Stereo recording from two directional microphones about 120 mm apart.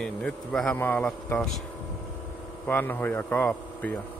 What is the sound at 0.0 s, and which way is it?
A man's voice, 5° left (ahead or behind).